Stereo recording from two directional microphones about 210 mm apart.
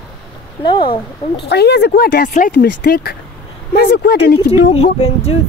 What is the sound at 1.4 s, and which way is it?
Speech, 50° left (ahead or behind).